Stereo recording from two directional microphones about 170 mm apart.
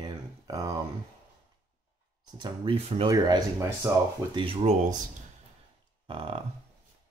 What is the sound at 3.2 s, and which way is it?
Speech, 20° right (ahead or behind).